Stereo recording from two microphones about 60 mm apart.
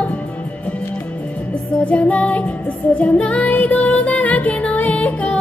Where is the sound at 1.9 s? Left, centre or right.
Left.